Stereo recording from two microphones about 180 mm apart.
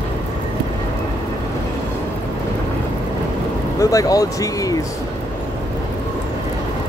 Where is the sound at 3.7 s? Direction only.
20° left (ahead or behind).